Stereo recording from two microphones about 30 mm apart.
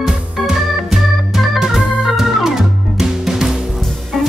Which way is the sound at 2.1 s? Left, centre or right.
Centre.